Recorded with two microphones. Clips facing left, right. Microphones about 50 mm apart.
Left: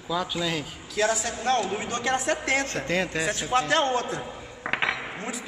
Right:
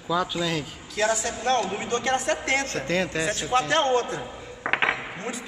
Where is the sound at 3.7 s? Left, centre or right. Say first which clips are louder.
Right 2 dB; centre.